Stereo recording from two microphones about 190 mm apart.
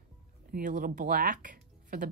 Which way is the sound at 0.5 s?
45° right (ahead or behind).